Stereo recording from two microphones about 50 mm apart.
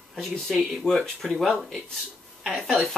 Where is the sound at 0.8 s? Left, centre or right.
Centre.